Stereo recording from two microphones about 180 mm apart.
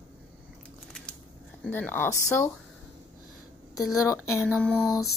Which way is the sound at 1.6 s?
10° left (ahead or behind).